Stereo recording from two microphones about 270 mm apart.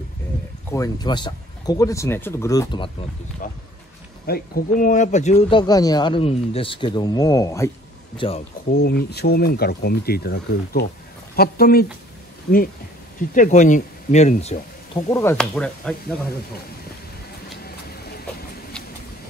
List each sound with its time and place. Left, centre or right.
0.7 s speech: centre
4.3 s speech: left
8.7 s speech: left
13.3 s speech: left
15.0 s chop: centre